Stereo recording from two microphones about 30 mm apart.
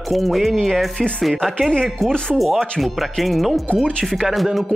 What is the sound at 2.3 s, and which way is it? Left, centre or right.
Speech, centre.